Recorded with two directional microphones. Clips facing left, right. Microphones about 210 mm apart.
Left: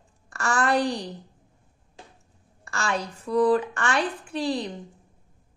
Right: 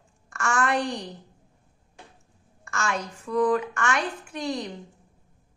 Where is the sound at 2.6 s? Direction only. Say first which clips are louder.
Left 1 dB; 35° left (ahead or behind).